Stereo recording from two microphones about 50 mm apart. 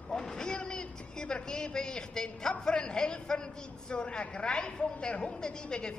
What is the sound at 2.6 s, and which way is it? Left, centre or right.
A man's voice, centre.